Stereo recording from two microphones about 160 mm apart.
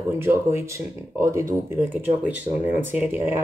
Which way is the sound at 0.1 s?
15° right (ahead or behind).